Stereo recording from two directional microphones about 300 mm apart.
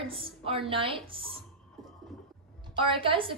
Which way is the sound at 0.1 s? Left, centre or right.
Centre.